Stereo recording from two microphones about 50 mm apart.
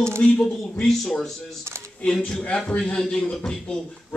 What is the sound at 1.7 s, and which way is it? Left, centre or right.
Speech, right.